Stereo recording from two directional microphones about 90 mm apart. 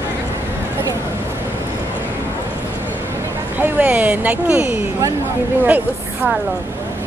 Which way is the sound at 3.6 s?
15° right (ahead or behind).